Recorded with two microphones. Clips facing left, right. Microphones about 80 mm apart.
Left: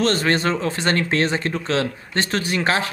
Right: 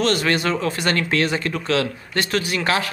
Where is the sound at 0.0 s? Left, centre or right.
Left.